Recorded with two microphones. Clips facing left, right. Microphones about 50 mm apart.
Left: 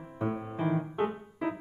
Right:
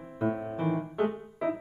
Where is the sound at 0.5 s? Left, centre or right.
Left.